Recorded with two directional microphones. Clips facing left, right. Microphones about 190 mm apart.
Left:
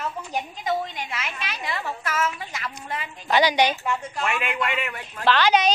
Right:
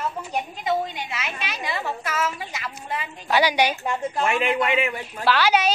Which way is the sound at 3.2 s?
10° right (ahead or behind).